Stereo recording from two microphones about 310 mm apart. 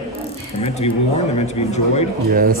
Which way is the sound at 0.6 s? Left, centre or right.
Centre.